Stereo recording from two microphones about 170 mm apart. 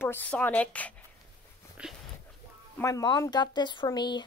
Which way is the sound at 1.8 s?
5° right (ahead or behind).